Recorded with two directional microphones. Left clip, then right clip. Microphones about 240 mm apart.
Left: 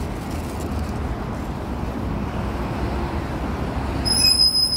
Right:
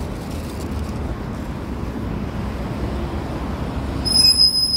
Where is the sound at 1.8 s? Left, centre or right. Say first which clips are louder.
Even; left.